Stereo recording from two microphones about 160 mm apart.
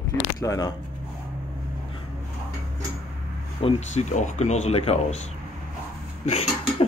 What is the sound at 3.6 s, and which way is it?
Speech, 45° left (ahead or behind).